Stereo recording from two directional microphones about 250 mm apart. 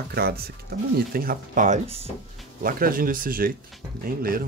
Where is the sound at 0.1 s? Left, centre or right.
Right.